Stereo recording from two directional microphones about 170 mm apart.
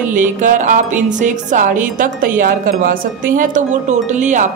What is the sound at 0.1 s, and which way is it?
A woman's voice, 50° right (ahead or behind).